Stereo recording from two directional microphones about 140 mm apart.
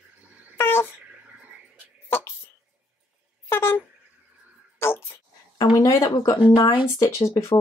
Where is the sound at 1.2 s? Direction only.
10° right (ahead or behind).